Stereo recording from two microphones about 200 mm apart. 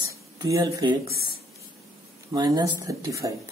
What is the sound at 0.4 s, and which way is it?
Speech, 15° right (ahead or behind).